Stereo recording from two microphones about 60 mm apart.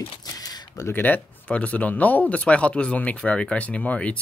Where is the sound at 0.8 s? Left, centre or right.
Left; by 4.1 s centre.